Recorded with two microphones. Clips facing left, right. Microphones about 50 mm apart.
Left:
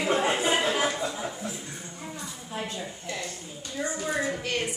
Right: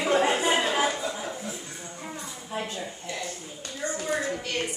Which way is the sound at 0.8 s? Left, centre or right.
Centre.